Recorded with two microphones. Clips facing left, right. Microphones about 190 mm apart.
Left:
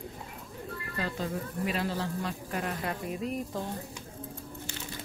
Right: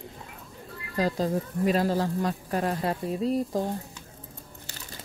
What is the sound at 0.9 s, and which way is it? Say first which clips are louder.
Speech: right 8 dB; 35° right (ahead or behind).